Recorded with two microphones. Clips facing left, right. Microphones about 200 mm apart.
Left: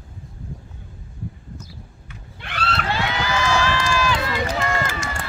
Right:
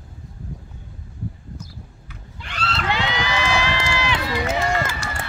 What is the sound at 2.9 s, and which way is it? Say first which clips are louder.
Run: even; 15° right (ahead or behind).